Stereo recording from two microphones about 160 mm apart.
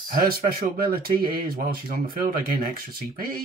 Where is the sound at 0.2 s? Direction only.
70° right (ahead or behind).